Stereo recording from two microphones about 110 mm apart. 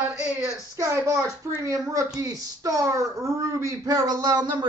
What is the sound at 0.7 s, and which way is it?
Speech, 25° right (ahead or behind).